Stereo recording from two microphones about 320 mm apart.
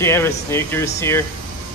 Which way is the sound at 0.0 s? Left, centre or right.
Centre.